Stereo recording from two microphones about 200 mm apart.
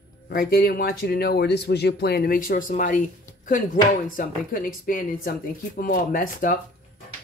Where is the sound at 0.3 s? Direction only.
50° left (ahead or behind).